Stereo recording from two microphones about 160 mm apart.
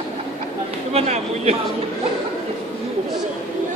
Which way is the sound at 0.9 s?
40° right (ahead or behind).